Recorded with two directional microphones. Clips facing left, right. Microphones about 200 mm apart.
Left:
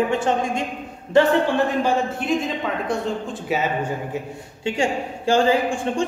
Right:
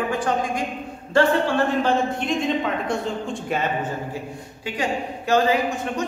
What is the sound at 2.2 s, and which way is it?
A man's voice, centre (ahead or behind).